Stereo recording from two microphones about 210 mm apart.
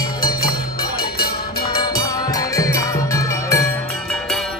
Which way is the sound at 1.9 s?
15° left (ahead or behind).